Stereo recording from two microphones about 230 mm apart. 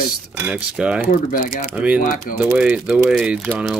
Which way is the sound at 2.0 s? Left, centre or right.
Left.